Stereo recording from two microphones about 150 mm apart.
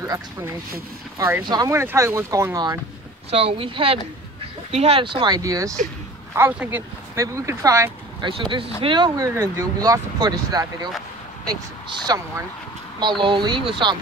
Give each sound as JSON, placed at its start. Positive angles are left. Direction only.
{"t": 0.0, "sound": "speech", "side_deg": -20}
{"t": 3.3, "sound": "speech", "side_deg": -40}
{"t": 8.2, "sound": "speech", "side_deg": -35}
{"t": 12.1, "sound": "speech", "side_deg": -25}